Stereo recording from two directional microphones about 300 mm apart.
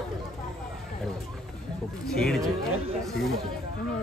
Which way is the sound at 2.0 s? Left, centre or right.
Centre.